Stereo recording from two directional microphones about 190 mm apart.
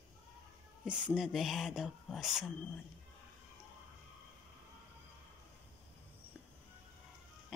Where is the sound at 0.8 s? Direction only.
5° right (ahead or behind).